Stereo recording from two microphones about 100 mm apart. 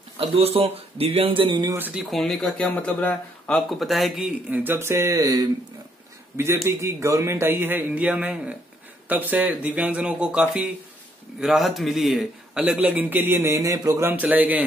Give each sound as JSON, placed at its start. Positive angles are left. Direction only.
{"t": 0.2, "sound": "speech", "side_deg": -80}
{"t": 1.8, "sound": "a man's voice", "side_deg": -15}
{"t": 2.0, "sound": "speech", "side_deg": 5}
{"t": 4.5, "sound": "a man's voice", "side_deg": -20}
{"t": 6.3, "sound": "a man's voice", "side_deg": -25}
{"t": 14.0, "sound": "a man's voice", "side_deg": -15}